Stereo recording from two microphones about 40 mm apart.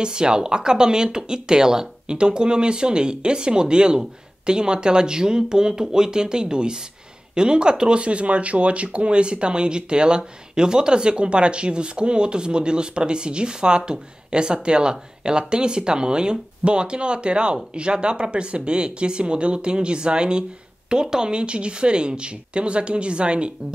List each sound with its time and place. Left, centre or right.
0.0 s speech: right